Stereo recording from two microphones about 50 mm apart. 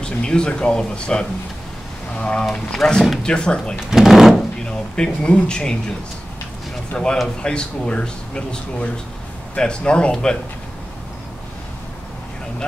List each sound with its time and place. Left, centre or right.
0.0 s speech: centre
2.8 s speech: centre
3.9 s speech: centre
4.6 s speech: centre
6.9 s speech: left